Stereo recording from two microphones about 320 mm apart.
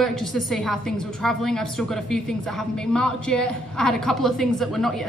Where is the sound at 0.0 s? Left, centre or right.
Centre.